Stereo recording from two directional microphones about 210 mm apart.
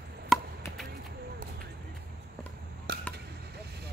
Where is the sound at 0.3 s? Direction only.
Centre (ahead or behind).